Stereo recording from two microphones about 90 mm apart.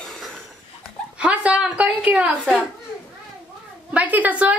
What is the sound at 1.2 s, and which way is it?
A woman's voice, 15° right (ahead or behind).